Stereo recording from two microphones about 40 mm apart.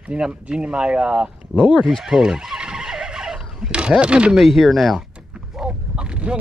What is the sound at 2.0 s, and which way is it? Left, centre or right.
Speech, centre.